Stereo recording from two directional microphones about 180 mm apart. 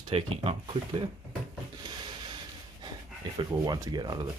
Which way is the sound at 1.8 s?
25° right (ahead or behind).